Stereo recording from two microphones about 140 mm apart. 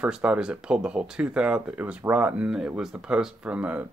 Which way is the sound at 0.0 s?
10° right (ahead or behind).